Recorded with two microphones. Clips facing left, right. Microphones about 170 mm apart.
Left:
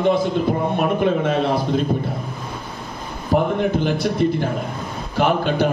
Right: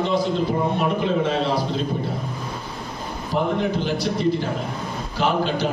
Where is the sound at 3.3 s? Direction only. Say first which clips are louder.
Left 4 dB; 55° left (ahead or behind).